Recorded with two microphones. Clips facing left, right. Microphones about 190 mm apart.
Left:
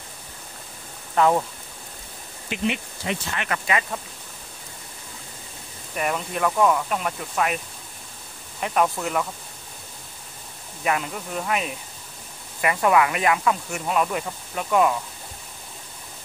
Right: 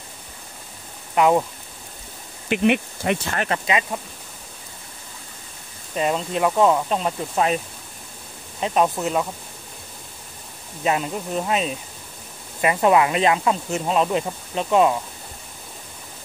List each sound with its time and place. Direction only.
1.1 s speech: 15° right (ahead or behind)
2.5 s speech: 60° right (ahead or behind)
3.4 s speech: 25° right (ahead or behind)
5.9 s speech: 25° right (ahead or behind)
10.8 s speech: 25° right (ahead or behind)